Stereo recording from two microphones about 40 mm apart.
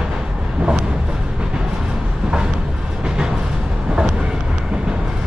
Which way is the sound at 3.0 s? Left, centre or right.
Centre.